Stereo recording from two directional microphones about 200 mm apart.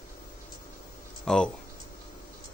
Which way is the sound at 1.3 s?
5° left (ahead or behind).